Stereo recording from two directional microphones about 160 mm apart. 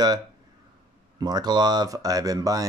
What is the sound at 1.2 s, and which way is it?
Speech, 25° right (ahead or behind).